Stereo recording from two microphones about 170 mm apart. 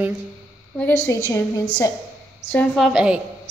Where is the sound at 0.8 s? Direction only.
15° left (ahead or behind).